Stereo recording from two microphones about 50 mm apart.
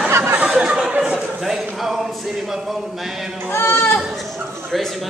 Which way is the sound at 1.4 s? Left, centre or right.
Centre.